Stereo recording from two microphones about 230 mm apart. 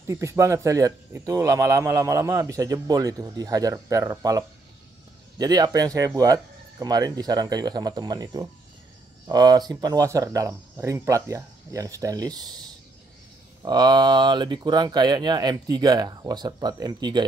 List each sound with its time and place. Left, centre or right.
0.0 s speech: centre